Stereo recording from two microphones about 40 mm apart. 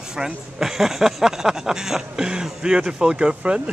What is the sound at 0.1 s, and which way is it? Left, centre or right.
A man's voice, centre.